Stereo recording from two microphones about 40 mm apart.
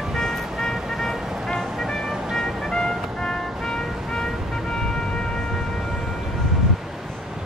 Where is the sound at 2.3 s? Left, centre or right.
Centre.